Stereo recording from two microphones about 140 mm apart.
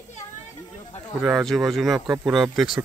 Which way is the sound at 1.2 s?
5° right (ahead or behind).